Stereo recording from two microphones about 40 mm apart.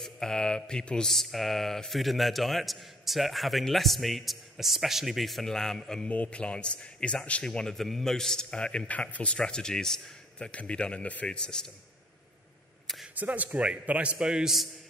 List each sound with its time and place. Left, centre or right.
0.0 s mantra: centre
1.0 s a man's voice: centre
5.5 s a man's voice: centre
6.0 s a man's voice: left
6.4 s a man's voice: left
7.4 s a man's voice: centre
8.5 s a man's voice: left
9.4 s a man's voice: centre
10.5 s a man's voice: left
11.2 s a man's voice: left
13.1 s a man's voice: right
14.1 s a man's voice: right